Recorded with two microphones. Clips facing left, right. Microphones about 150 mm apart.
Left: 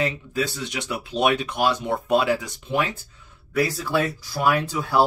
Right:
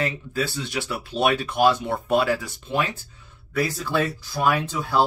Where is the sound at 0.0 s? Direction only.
20° left (ahead or behind).